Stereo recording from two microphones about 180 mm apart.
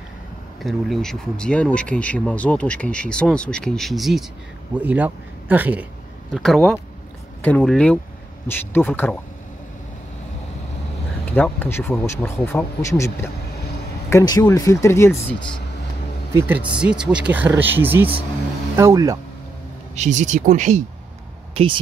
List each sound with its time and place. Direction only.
0.6 s speech: centre (ahead or behind)
11.3 s speech: 10° left (ahead or behind)
16.3 s speech: 10° right (ahead or behind)
20.0 s speech: 40° right (ahead or behind)